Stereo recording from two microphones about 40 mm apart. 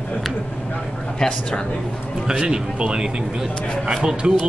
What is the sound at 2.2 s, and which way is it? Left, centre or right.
Speech, right.